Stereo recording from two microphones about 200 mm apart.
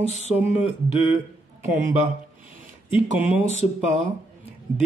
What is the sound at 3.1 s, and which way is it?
Speech, 5° right (ahead or behind).